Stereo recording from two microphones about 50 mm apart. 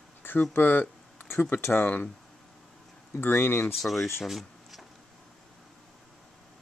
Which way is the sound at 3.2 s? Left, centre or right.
Left.